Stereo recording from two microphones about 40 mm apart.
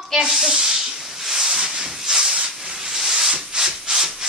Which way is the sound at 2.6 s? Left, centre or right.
Centre.